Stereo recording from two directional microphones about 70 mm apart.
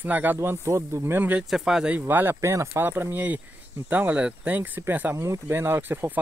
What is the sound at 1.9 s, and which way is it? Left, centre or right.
Speech, right.